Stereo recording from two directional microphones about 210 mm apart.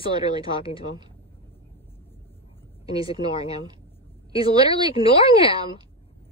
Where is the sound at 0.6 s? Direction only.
20° right (ahead or behind).